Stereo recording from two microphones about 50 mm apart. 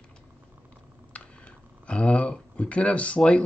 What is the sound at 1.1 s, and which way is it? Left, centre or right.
Speech, left.